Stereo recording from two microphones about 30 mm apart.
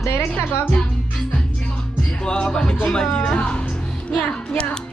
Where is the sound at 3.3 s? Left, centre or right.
Left.